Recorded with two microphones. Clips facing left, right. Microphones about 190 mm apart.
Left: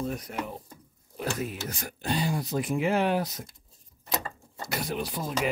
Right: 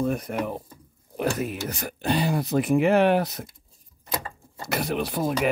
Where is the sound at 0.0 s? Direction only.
55° right (ahead or behind).